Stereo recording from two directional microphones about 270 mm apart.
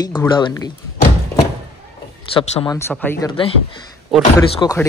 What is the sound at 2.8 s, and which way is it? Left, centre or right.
Speech, centre.